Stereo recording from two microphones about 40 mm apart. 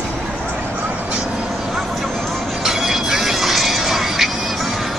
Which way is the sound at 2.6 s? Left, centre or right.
Centre.